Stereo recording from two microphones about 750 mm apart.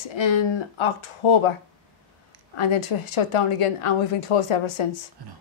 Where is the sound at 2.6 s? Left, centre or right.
Left.